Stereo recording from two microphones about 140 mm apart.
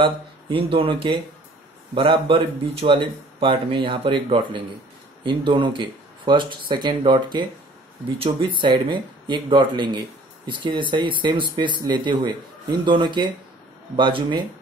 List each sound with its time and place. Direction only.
0.0 s speech: 40° right (ahead or behind)